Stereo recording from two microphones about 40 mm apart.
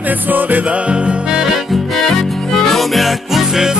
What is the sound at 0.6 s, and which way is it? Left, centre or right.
Music, right.